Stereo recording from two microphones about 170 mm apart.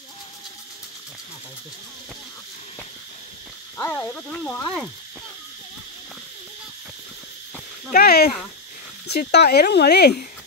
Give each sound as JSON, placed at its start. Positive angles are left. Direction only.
{"t": 3.7, "sound": "speech", "side_deg": 15}
{"t": 7.9, "sound": "speech", "side_deg": 65}